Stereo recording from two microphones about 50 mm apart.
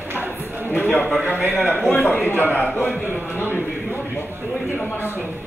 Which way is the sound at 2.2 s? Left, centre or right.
Left.